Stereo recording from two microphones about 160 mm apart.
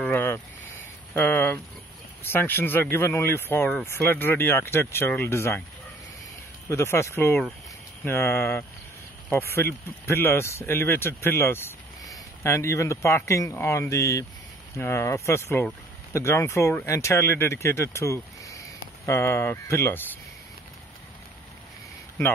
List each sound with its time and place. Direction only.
0.0 s a sound: 10° left (ahead or behind)
2.2 s speech: 15° left (ahead or behind)
6.7 s speech: 15° left (ahead or behind)